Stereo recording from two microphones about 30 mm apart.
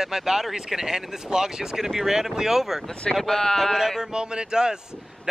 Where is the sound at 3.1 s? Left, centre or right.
Left.